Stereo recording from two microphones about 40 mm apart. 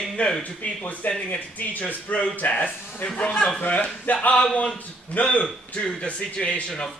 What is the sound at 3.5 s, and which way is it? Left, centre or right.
A man's voice, left.